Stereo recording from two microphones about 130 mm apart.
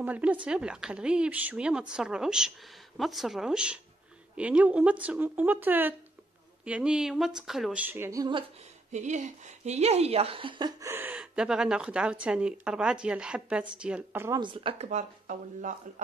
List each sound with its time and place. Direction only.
0.0 s speech: 10° right (ahead or behind)
7.8 s speech: 15° right (ahead or behind)
8.9 s speech: 65° right (ahead or behind); by 10.7 s 40° right (ahead or behind)
10.8 s speech: 20° right (ahead or behind)
14.4 s speech: 40° right (ahead or behind)
14.9 s speech: 70° right (ahead or behind)